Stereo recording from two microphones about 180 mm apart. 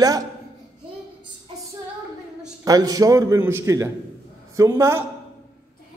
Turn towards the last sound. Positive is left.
turn(degrees=-15)  # may be behind; listen again after turning